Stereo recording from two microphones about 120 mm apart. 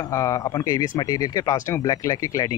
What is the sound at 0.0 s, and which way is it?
A man's voice, 30° left (ahead or behind).